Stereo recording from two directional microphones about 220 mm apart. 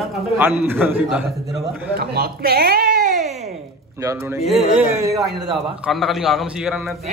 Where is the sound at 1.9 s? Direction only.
45° right (ahead or behind).